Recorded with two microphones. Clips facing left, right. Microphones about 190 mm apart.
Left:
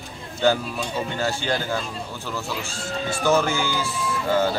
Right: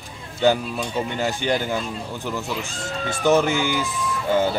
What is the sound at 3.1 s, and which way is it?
Speech, 20° right (ahead or behind).